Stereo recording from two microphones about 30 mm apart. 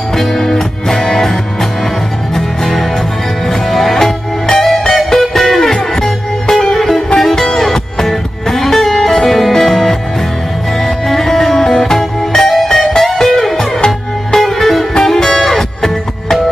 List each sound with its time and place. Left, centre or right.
0.1 s music: centre
5.8 s music: centre